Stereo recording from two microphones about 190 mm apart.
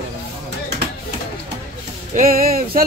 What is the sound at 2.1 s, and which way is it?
Speech, 50° right (ahead or behind).